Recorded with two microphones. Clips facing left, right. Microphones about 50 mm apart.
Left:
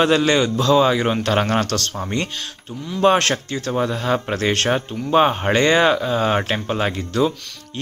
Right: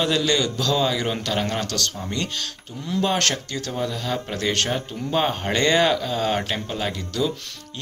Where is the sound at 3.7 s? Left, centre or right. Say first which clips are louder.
Left 7 dB; left.